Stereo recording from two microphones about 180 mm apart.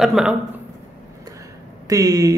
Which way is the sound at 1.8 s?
20° right (ahead or behind).